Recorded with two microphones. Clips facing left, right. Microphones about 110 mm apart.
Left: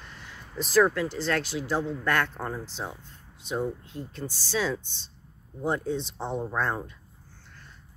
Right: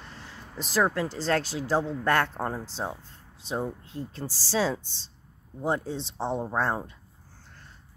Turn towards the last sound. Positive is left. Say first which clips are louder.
# right 1 dB
turn(degrees=-25)  # may be behind; listen again after turning